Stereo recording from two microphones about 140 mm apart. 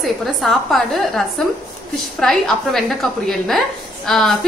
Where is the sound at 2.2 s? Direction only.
5° left (ahead or behind).